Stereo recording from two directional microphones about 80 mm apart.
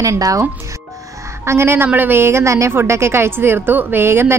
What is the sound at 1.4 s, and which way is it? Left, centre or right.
A woman's voice, right.